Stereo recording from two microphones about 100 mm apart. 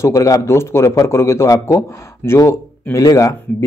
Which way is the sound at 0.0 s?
35° left (ahead or behind).